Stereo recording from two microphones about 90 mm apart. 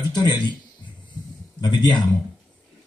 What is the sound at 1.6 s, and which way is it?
Speech, 60° left (ahead or behind).